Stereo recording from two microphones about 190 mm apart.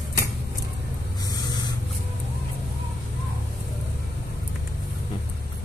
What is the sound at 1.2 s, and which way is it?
Spray, 20° left (ahead or behind).